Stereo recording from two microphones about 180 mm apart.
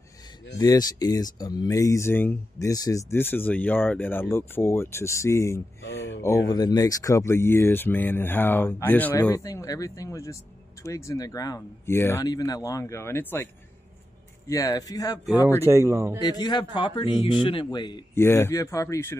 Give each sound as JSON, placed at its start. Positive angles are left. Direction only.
{"t": 0.6, "sound": "speech", "side_deg": 20}
{"t": 5.9, "sound": "a sound", "side_deg": 75}
{"t": 6.2, "sound": "speech", "side_deg": 20}
{"t": 14.5, "sound": "speech", "side_deg": 20}
{"t": 15.2, "sound": "speech", "side_deg": -10}
{"t": 16.2, "sound": "speech", "side_deg": 20}